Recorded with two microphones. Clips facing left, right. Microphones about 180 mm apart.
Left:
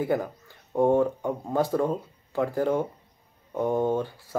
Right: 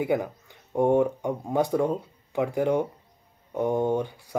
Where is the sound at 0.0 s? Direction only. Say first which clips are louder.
Right 1 dB; 15° right (ahead or behind).